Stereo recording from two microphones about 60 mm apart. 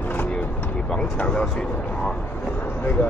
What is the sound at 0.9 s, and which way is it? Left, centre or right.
Speech, centre.